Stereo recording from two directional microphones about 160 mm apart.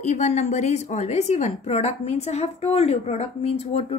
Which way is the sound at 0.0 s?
45° left (ahead or behind).